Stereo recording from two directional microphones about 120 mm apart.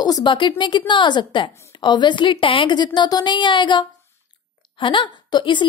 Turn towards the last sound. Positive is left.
turn(degrees=40)  # may be behind; listen again after turning